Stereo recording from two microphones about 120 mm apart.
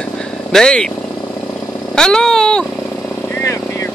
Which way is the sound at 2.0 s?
5° left (ahead or behind).